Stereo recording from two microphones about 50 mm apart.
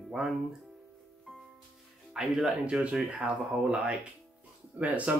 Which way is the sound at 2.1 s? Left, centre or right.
Centre.